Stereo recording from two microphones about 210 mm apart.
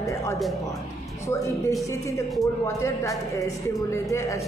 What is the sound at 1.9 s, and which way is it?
Speech, 15° left (ahead or behind).